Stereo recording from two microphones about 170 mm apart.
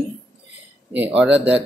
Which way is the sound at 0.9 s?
10° right (ahead or behind).